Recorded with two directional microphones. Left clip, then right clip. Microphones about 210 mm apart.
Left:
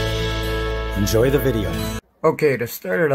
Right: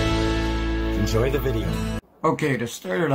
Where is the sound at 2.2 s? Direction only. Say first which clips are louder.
Left 5 dB; 50° left (ahead or behind).